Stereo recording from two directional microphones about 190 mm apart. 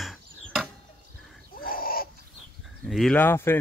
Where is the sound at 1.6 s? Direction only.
50° left (ahead or behind).